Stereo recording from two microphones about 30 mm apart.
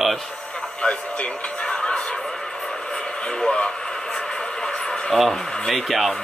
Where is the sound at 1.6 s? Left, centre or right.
Left.